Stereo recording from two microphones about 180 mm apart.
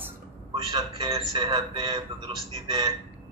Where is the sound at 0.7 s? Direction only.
25° right (ahead or behind).